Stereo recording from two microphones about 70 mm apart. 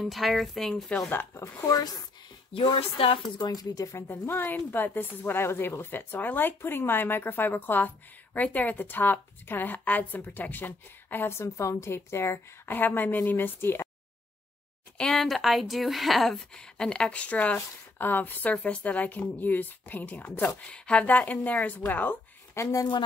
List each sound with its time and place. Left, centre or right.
0.0 s speech: centre
1.1 s speech: left
1.7 s speech: left
3.3 s speech: left
4.1 s a woman's voice: left
11.3 s a woman's voice: left
15.0 s speech: centre; by 20.2 s left
20.6 s speech: centre
22.5 s speech: left